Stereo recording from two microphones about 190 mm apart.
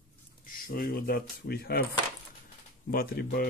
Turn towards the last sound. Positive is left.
turn(degrees=50)  # may be behind; listen again after turning